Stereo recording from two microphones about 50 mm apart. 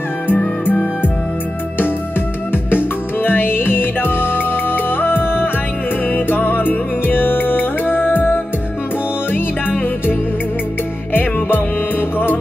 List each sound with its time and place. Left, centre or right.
0.3 s music: left
2.5 s music: left